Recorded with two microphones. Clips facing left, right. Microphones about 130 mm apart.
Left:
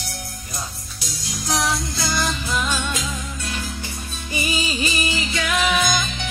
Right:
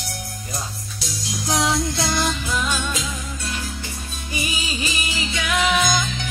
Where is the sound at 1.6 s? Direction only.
25° right (ahead or behind).